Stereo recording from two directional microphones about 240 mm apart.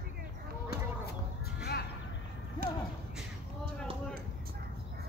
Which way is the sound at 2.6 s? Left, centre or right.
Right.